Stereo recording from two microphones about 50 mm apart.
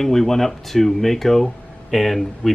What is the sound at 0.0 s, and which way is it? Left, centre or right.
Speech, centre.